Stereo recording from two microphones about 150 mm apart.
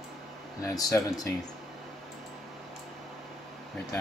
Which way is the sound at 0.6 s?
25° left (ahead or behind).